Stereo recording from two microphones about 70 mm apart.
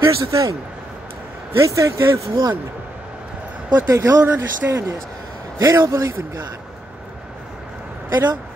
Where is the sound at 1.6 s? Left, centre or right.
Right.